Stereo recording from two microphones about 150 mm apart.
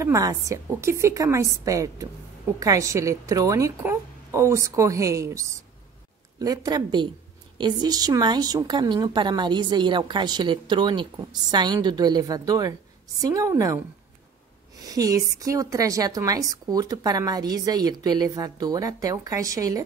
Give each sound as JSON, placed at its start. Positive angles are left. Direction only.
{"t": 0.0, "sound": "a woman's voice", "side_deg": -20}
{"t": 14.8, "sound": "a woman's voice", "side_deg": -25}